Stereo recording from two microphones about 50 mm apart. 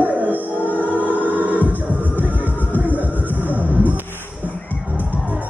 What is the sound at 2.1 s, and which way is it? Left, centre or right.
Music, left.